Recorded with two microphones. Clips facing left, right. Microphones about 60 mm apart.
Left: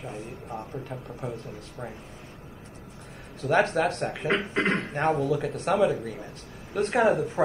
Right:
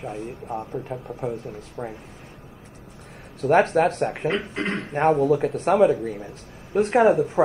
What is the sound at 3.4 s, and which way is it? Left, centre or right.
Speech, right.